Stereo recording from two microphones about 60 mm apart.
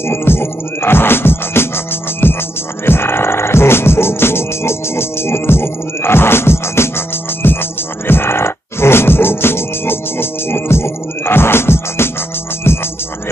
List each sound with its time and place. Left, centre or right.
0.1 s music: left